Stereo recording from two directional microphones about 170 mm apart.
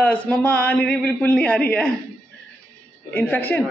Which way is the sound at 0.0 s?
10° left (ahead or behind).